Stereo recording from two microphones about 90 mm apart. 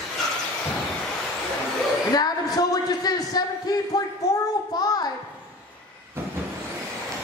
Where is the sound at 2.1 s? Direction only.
45° left (ahead or behind).